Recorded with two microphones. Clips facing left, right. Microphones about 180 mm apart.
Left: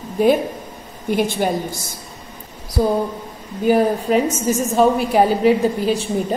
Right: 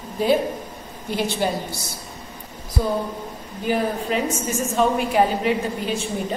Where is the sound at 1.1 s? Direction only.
50° left (ahead or behind).